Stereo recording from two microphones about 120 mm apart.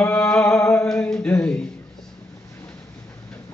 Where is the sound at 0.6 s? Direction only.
25° left (ahead or behind).